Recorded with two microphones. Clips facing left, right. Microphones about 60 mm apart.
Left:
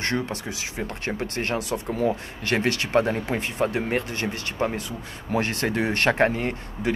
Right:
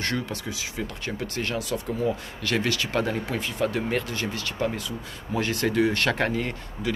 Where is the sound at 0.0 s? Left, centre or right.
Left.